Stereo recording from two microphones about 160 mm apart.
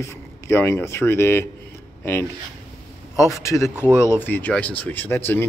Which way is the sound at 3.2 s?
20° left (ahead or behind).